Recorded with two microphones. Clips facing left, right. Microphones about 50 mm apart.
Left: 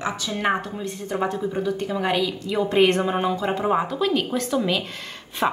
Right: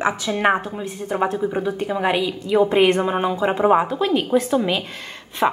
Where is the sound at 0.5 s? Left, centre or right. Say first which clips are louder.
Right 3 dB; centre.